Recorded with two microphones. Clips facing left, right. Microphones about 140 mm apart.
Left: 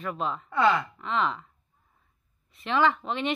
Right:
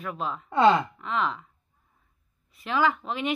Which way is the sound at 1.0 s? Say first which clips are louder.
Even; centre (ahead or behind).